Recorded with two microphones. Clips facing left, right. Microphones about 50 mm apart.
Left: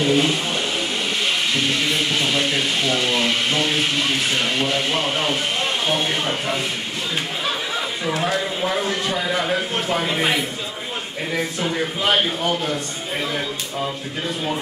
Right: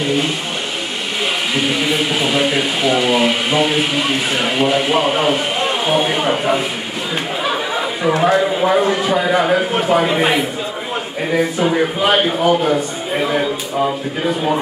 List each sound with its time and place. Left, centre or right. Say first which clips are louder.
1.5 s a man's voice: right 4 dB; centre